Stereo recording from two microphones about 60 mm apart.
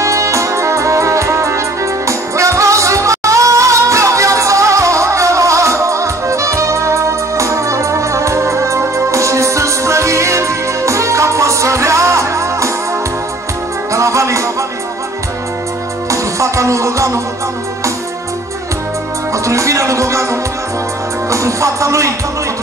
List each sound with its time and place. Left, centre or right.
0.0 s music: right
13.9 s music: right
16.1 s music: right
19.3 s music: right